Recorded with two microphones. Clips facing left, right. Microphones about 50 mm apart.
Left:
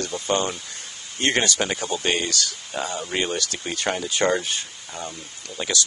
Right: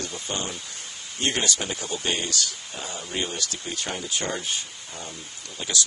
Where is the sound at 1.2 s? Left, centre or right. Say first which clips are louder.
Left 4 dB; left.